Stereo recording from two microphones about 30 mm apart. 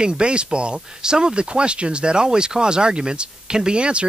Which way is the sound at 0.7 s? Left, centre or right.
Right.